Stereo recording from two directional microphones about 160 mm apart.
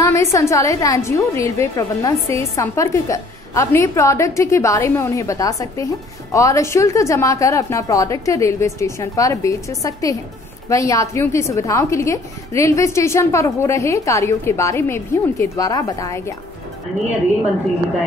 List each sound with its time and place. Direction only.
0.0 s a woman's voice: 20° left (ahead or behind)